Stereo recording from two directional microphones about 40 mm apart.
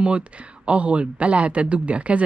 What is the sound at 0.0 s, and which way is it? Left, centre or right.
Speech, right.